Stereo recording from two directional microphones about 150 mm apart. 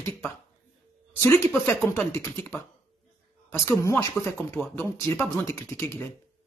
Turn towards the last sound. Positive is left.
turn(degrees=15)  # may be behind; listen again after turning